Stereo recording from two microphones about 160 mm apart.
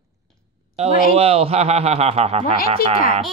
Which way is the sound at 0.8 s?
40° right (ahead or behind).